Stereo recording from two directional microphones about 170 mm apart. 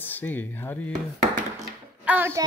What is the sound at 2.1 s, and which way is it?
Speech, 15° right (ahead or behind).